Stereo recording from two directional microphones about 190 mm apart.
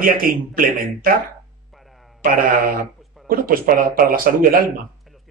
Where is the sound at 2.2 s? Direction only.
50° right (ahead or behind).